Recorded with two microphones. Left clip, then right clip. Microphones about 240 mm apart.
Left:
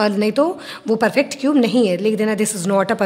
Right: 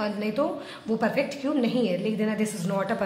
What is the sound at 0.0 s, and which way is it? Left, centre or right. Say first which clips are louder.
A woman's voice: left 10 dB; left.